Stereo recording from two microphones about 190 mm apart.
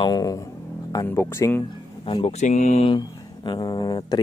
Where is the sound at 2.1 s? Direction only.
30° left (ahead or behind).